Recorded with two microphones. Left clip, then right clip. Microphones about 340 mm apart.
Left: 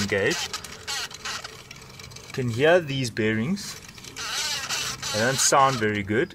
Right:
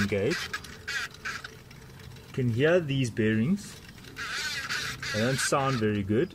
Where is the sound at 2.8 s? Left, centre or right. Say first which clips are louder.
Left 2 dB; centre.